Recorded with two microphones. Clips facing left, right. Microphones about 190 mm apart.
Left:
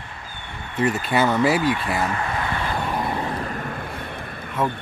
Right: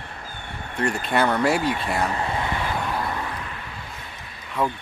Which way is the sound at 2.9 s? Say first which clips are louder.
Left 2 dB; 20° left (ahead or behind).